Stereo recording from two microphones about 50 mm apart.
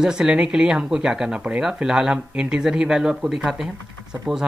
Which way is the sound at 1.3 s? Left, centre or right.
Right.